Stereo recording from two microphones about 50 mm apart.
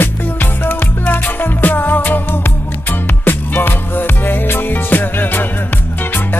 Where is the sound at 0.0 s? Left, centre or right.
Left.